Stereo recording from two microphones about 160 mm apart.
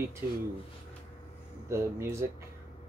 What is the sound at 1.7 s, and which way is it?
Speech, 15° right (ahead or behind).